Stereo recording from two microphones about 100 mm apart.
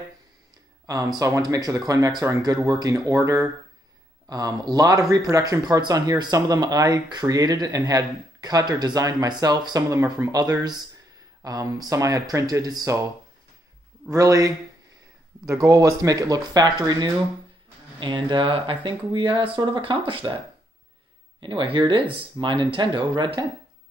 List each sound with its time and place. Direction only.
0.8 s speech: 35° right (ahead or behind)
11.4 s speech: 40° right (ahead or behind)
14.1 s speech: 35° right (ahead or behind)
15.6 s speech: 30° right (ahead or behind); by 20.3 s 60° right (ahead or behind)
21.4 s speech: 55° right (ahead or behind)